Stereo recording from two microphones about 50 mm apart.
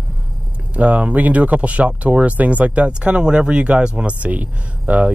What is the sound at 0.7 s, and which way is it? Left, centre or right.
Speech, right.